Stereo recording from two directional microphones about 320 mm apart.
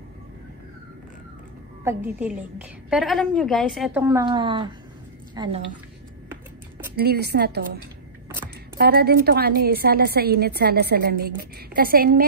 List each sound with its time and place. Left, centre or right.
1.9 s a woman's voice: centre
7.0 s a woman's voice: right